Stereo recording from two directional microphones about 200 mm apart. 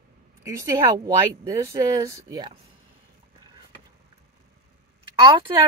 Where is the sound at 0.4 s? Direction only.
15° right (ahead or behind).